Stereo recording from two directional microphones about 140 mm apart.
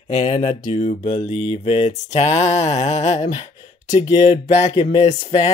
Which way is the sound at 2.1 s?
50° left (ahead or behind).